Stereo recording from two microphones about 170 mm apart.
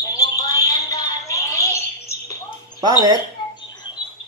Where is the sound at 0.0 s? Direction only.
20° left (ahead or behind).